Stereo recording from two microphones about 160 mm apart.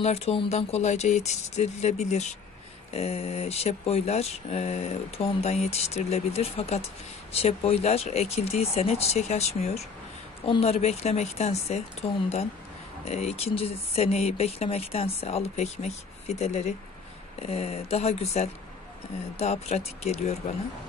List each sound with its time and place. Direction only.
0.0 s speech: 40° left (ahead or behind)